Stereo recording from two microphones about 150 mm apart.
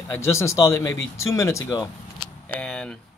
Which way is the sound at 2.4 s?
5° left (ahead or behind).